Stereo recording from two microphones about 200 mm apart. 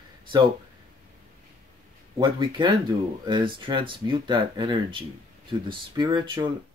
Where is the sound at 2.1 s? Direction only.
25° right (ahead or behind).